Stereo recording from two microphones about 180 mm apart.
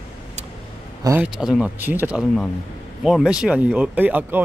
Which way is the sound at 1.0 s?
10° right (ahead or behind).